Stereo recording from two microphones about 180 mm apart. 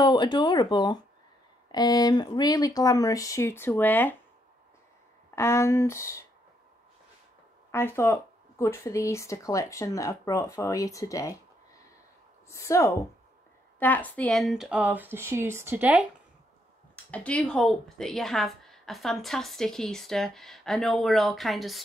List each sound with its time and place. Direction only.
0.0 s speech: 25° left (ahead or behind)
5.3 s speech: 15° left (ahead or behind)
7.7 s speech: 15° left (ahead or behind)
12.4 s speech: 15° left (ahead or behind); by 16.1 s 10° right (ahead or behind)
16.9 s speech: 5° left (ahead or behind)